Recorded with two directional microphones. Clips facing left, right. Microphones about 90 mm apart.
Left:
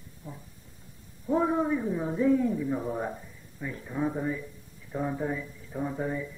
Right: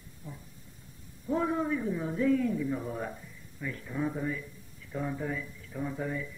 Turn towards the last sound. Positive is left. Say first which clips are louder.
# left 3 dB
turn(degrees=20)  # may be behind; listen again after turning